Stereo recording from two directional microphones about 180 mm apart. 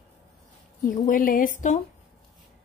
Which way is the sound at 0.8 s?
45° left (ahead or behind).